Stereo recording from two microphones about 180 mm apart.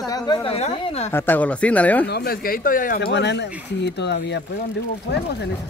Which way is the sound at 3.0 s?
75° left (ahead or behind).